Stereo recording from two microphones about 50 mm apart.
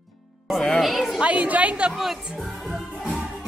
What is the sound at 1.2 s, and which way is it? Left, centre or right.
Speech, right.